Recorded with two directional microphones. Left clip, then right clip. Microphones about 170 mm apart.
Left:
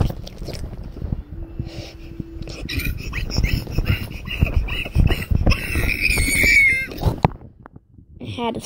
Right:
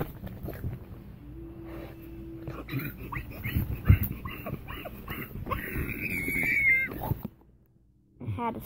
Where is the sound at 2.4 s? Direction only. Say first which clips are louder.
Left 10 dB; 30° left (ahead or behind).